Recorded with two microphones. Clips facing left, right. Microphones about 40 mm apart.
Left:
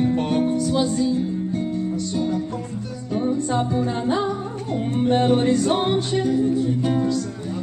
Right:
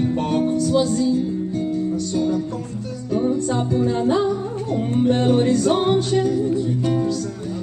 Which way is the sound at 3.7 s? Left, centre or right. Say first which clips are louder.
Right 3 dB; centre.